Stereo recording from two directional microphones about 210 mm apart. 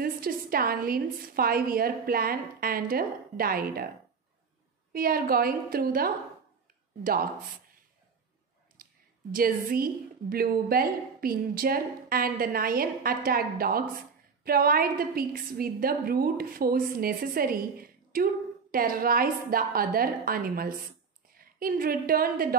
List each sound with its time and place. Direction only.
0.0 s a woman's voice: 45° right (ahead or behind)
4.9 s a woman's voice: 45° right (ahead or behind)
8.8 s a sound: 40° right (ahead or behind)
9.3 s a woman's voice: 45° right (ahead or behind)